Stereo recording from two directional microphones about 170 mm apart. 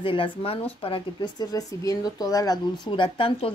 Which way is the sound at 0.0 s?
30° left (ahead or behind).